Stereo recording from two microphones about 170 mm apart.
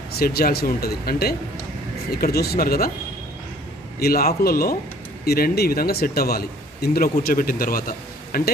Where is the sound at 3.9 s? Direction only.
65° left (ahead or behind).